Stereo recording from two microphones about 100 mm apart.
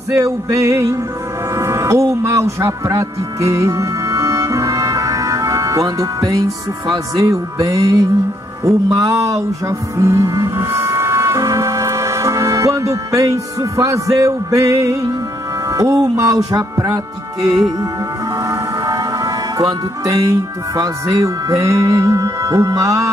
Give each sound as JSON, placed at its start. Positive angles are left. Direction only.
{"t": 0.1, "sound": "music", "side_deg": -30}
{"t": 1.5, "sound": "speech", "side_deg": -30}
{"t": 8.9, "sound": "music", "side_deg": -35}
{"t": 18.5, "sound": "speech", "side_deg": -40}